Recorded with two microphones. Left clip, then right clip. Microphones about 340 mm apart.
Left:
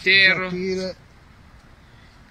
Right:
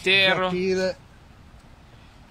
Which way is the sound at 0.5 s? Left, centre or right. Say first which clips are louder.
Right 3 dB; right.